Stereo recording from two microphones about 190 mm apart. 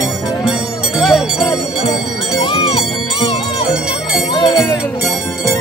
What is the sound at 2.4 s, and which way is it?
Music, 25° left (ahead or behind).